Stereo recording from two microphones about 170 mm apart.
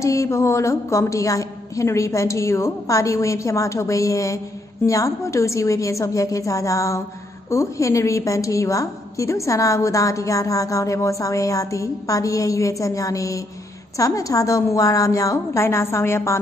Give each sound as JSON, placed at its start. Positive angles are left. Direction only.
{"t": 0.0, "sound": "a woman's voice", "side_deg": 20}